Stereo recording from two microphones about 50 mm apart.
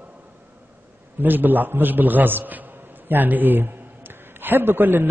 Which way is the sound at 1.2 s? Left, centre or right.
Right.